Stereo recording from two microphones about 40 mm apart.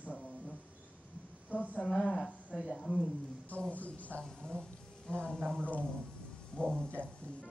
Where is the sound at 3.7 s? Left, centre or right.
Left.